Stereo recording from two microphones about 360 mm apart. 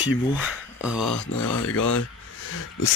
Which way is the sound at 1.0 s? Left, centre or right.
Left.